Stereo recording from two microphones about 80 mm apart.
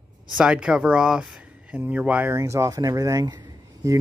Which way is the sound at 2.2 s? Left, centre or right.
Right.